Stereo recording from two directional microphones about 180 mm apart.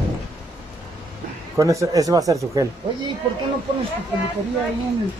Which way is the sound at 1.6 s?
15° right (ahead or behind).